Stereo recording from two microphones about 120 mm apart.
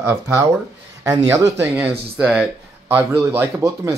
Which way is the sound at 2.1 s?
5° right (ahead or behind).